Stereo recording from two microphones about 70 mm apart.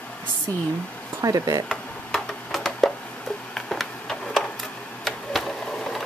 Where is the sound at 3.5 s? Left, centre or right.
Centre.